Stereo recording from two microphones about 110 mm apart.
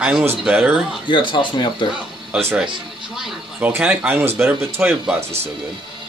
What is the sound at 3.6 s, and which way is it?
A man's voice, 15° right (ahead or behind).